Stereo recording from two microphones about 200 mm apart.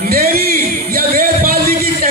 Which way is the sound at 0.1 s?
45° right (ahead or behind).